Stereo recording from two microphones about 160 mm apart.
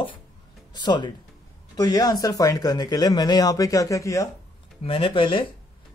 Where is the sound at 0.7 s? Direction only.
30° left (ahead or behind).